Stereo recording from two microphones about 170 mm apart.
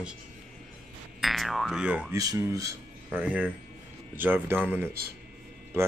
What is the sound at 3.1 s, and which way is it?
A man's voice, 10° right (ahead or behind).